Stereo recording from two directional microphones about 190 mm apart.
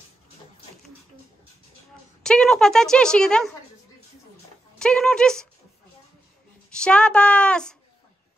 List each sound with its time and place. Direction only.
2.2 s speech: 5° left (ahead or behind)
4.7 s speech: 5° left (ahead or behind)
6.7 s speech: 5° left (ahead or behind)